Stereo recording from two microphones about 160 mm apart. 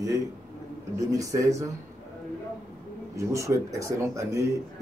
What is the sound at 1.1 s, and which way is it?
Speech, 20° right (ahead or behind).